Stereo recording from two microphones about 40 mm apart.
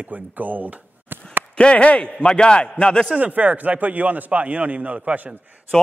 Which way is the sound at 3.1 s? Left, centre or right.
Right.